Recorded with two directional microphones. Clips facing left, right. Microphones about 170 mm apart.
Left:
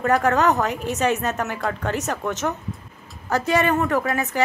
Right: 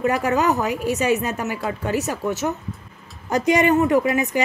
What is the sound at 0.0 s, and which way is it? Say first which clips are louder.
A woman's voice: left 1 dB; 10° right (ahead or behind).